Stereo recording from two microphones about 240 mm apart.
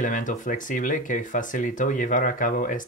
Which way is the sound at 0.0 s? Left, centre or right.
Left.